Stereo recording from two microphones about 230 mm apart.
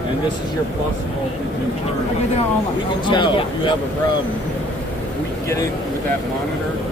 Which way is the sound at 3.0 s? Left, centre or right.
Left.